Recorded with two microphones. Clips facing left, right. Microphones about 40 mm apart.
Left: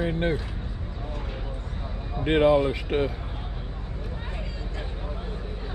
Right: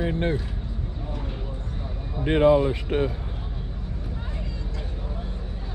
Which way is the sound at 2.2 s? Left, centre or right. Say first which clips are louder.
Right 1 dB; left.